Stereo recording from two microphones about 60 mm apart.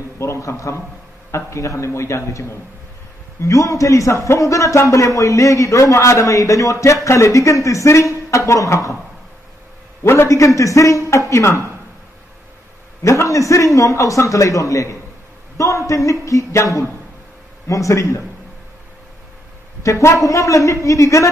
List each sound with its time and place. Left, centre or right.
0.2 s a man's voice: left
10.2 s a man's voice: left
13.0 s a man's voice: left
19.8 s a man's voice: left